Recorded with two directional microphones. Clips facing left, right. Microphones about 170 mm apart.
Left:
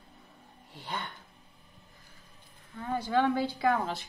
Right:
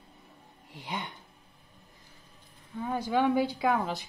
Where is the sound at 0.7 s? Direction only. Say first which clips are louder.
Right 1 dB; 15° right (ahead or behind).